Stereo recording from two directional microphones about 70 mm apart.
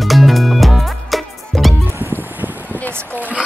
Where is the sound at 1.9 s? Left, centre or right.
Right.